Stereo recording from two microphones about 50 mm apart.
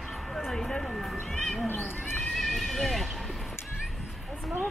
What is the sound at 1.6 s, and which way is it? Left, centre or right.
Neigh, left.